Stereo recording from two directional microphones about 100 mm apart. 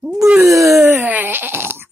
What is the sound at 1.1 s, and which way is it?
Sheep, 20° right (ahead or behind).